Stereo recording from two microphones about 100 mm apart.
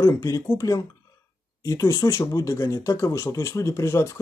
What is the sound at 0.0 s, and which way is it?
Speech, 35° left (ahead or behind).